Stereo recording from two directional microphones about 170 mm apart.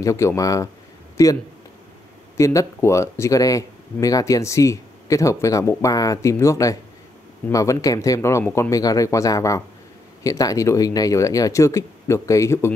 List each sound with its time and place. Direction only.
0.0 s speech: 20° left (ahead or behind)